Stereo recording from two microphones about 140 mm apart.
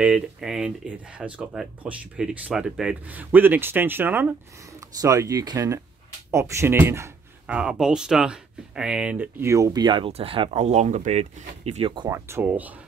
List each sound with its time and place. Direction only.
0.0 s speech: 5° right (ahead or behind)
5.0 s speech: 25° right (ahead or behind); by 11.9 s 50° right (ahead or behind)
12.1 s speech: 20° right (ahead or behind)